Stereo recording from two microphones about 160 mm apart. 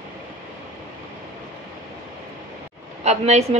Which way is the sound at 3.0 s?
45° right (ahead or behind).